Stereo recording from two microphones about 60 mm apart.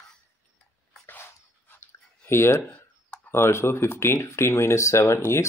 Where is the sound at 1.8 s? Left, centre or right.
Left.